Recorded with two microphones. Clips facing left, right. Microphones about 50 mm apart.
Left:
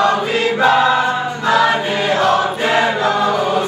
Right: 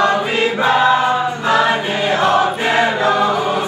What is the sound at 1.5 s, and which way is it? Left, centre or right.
Choir, right.